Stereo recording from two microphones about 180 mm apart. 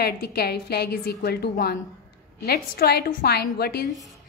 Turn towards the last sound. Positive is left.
turn(degrees=0)  # may be behind; listen again after turning